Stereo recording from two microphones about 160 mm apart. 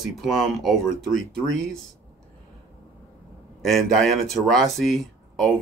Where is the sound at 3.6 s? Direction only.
Centre (ahead or behind).